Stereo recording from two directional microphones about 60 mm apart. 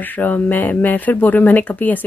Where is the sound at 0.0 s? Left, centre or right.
Left.